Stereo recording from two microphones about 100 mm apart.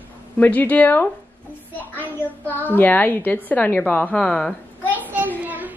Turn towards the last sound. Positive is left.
turn(degrees=-15)  # may be behind; listen again after turning